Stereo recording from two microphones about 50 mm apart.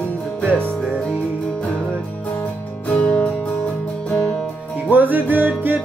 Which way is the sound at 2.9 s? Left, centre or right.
Left.